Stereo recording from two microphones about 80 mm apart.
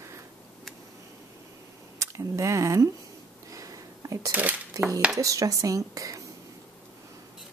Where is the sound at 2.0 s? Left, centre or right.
Right.